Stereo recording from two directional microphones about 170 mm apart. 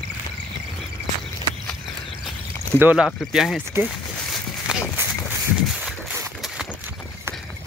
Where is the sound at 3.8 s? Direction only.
Centre (ahead or behind).